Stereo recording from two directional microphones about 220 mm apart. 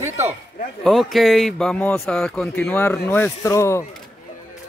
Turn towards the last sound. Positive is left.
turn(degrees=15)  # may be behind; listen again after turning